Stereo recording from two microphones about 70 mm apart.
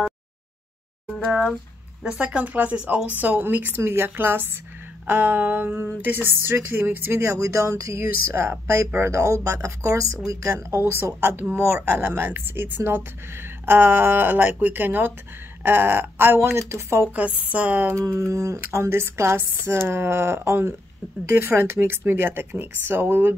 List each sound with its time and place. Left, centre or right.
2.0 s speech: centre; by 17.1 s right
17.1 s speech: centre
17.9 s a sound: right
18.6 s speech: right